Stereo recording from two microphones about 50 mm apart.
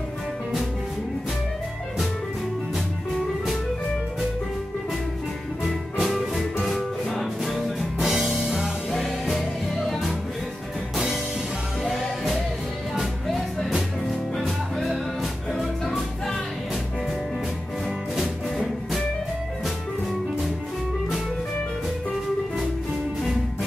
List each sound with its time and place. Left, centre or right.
5.6 s music: centre
8.5 s music: centre
8.9 s music: centre
11.8 s music: centre
14.4 s music: centre
18.6 s music: centre